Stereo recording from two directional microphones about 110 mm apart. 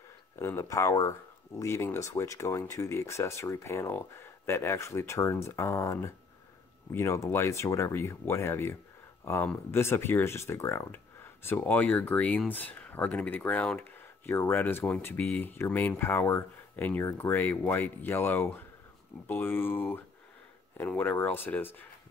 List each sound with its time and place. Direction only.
0.4 s speech: 25° left (ahead or behind)
11.4 s speech: 15° left (ahead or behind)